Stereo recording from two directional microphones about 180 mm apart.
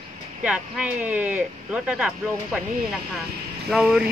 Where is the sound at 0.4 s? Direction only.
5° right (ahead or behind).